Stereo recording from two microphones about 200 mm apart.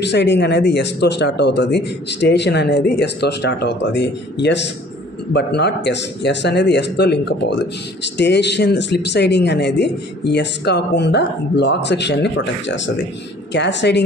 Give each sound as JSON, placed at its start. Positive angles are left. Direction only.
{"t": 0.0, "sound": "speech", "side_deg": 60}